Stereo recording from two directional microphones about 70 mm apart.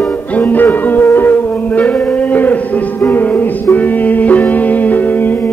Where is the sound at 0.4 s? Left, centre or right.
Left.